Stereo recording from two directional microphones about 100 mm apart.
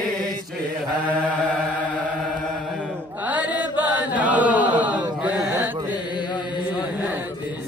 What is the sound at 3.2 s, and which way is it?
Chant, 15° right (ahead or behind).